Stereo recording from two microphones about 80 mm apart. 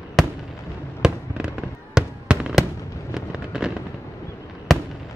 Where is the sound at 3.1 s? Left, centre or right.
Centre.